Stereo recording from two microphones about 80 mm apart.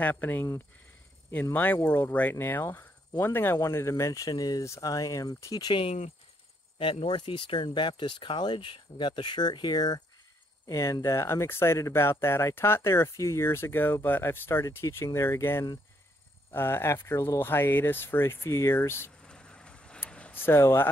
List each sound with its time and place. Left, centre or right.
0.0 s speech: left
6.8 s speech: left
10.7 s speech: left
19.2 s vehicle: centre
20.1 s a sound: centre
20.3 s speech: left